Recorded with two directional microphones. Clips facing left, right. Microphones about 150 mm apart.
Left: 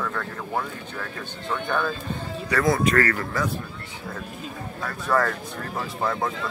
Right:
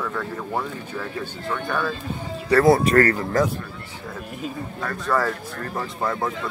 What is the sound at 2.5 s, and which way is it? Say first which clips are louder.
Speech: right 6 dB; 30° right (ahead or behind).